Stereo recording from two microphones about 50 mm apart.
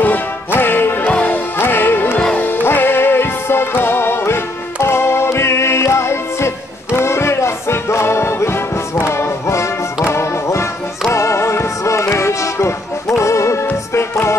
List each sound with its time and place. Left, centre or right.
0.0 s music: left